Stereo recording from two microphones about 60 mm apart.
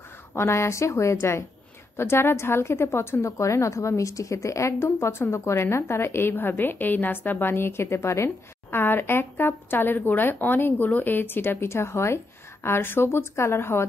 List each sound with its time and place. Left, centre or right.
0.3 s a woman's voice: left